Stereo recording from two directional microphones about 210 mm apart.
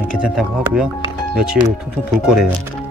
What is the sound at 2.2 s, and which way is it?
Speech, 5° right (ahead or behind).